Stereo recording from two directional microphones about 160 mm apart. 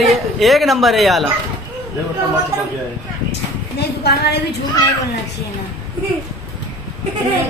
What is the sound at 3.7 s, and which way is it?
Speech, 90° left.